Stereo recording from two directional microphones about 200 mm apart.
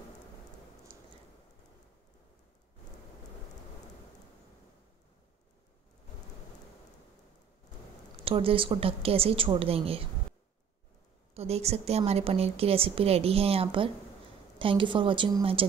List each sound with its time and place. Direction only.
0.9 s a sound: 25° right (ahead or behind)
8.2 s a woman's voice: 25° right (ahead or behind)
11.3 s a woman's voice: 30° right (ahead or behind)